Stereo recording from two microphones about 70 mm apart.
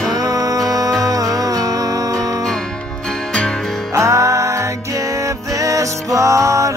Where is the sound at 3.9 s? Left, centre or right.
Right.